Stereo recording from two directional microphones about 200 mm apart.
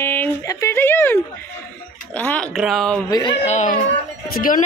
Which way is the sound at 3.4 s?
40° left (ahead or behind).